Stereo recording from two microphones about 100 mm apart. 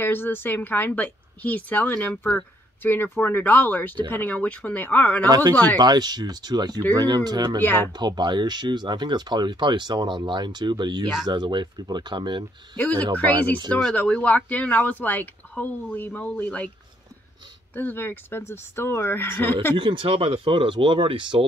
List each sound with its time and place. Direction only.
0.0 s a woman's voice: 20° left (ahead or behind)
5.3 s speech: 40° right (ahead or behind)
7.6 s a woman's voice: 20° left (ahead or behind)
7.9 s speech: 45° right (ahead or behind)
12.7 s speech: 15° left (ahead or behind)
17.7 s a woman's voice: 20° left (ahead or behind)
19.8 s speech: 55° right (ahead or behind)